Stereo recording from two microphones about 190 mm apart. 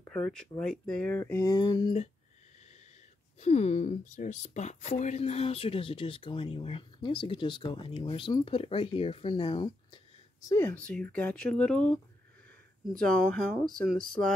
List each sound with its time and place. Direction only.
0.3 s speech: 5° left (ahead or behind); by 2.0 s 25° left (ahead or behind)
3.3 s speech: 35° left (ahead or behind)
10.5 s speech: 10° left (ahead or behind)